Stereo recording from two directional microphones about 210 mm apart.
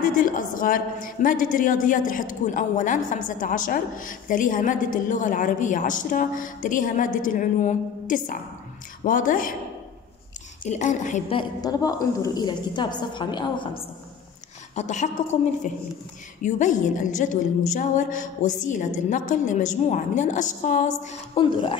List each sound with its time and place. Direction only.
0.0 s a woman's voice: 40° left (ahead or behind)
10.6 s a woman's voice: 35° left (ahead or behind)
14.8 s a woman's voice: 35° left (ahead or behind)